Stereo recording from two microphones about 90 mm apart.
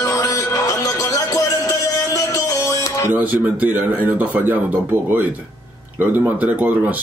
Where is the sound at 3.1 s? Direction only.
15° right (ahead or behind).